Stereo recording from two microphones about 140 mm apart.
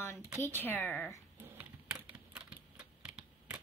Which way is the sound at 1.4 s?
10° right (ahead or behind).